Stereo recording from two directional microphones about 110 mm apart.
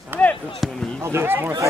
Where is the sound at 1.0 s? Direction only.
20° right (ahead or behind).